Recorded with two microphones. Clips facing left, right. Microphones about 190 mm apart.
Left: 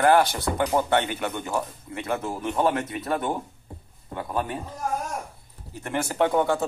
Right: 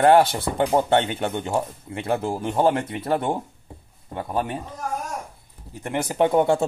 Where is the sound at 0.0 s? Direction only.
25° right (ahead or behind).